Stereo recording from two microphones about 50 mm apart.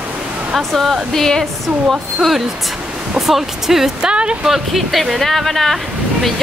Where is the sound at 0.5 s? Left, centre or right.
Centre.